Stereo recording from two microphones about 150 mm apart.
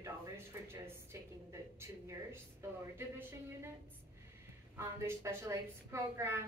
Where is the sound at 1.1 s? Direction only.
20° right (ahead or behind).